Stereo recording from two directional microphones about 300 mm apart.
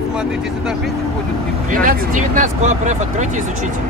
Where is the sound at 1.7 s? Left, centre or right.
Right.